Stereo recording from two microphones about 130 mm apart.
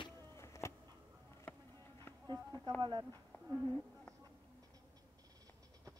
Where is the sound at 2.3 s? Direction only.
35° right (ahead or behind).